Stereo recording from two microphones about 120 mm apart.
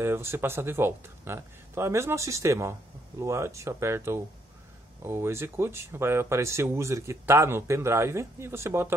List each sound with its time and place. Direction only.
0.0 s speech: 20° right (ahead or behind)